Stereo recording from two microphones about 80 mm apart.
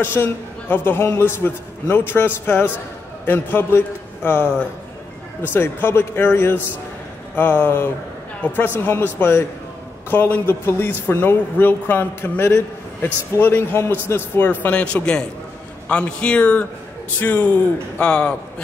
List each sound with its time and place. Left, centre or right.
0.0 s a man's voice: left; by 18.3 s centre